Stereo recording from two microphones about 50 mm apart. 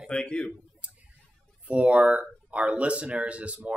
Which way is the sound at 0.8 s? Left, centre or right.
Right.